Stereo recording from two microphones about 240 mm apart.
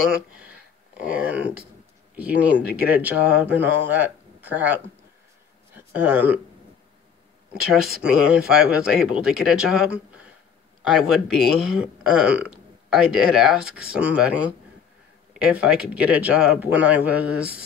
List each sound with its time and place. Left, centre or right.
0.9 s speech: centre
5.8 s speech: centre
8.0 s speech: centre